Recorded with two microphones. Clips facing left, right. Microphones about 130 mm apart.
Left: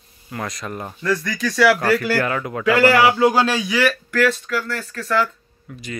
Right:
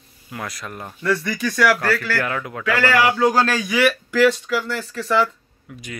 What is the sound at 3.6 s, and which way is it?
Speech, 5° right (ahead or behind).